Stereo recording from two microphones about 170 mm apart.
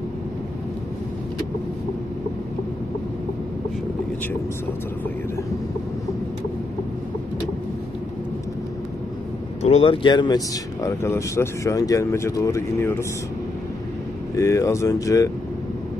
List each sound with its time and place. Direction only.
9.6 s speech: 35° left (ahead or behind); by 12.9 s 15° left (ahead or behind)
14.3 s speech: 15° left (ahead or behind)